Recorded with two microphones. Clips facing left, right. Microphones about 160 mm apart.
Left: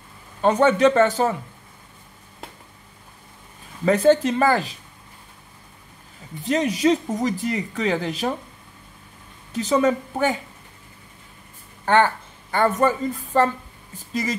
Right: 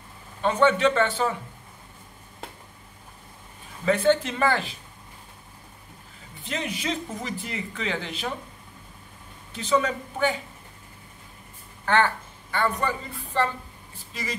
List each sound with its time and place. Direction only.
0.4 s speech: 40° left (ahead or behind)
3.8 s speech: 40° left (ahead or behind)
6.4 s speech: 40° left (ahead or behind)
9.5 s speech: 40° left (ahead or behind)
11.8 s speech: 35° left (ahead or behind)